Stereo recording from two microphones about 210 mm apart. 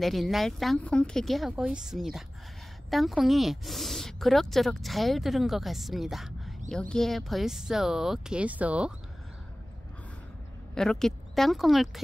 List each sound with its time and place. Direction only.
0.0 s speech: centre (ahead or behind)
10.7 s speech: 5° left (ahead or behind)